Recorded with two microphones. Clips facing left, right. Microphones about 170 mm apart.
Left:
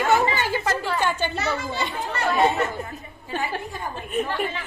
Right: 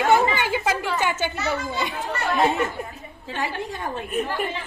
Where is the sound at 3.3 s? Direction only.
90° right.